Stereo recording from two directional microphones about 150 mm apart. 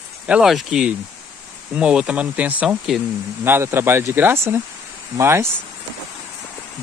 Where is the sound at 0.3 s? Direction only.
Centre (ahead or behind); by 5.5 s 15° right (ahead or behind).